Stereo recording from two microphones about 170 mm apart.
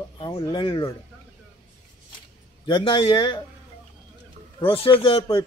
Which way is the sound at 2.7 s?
30° left (ahead or behind).